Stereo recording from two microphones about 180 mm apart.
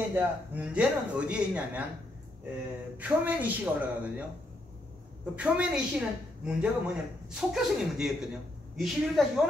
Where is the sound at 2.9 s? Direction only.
10° right (ahead or behind).